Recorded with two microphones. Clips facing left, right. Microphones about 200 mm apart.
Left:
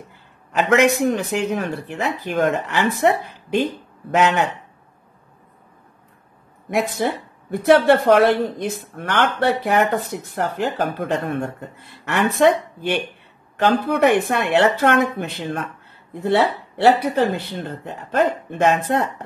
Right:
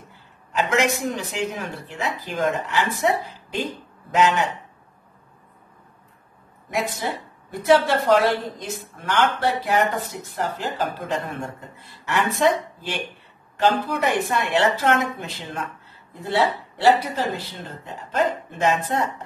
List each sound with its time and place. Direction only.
0.5 s speech: 60° left (ahead or behind)
6.7 s speech: 55° left (ahead or behind)